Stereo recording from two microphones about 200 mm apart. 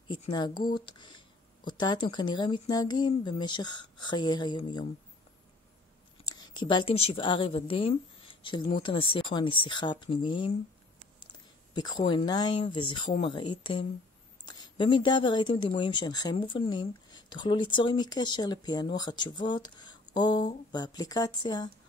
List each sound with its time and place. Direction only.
0.1 s a woman's voice: 25° left (ahead or behind)
6.2 s a woman's voice: 20° left (ahead or behind)
11.7 s a woman's voice: 25° left (ahead or behind)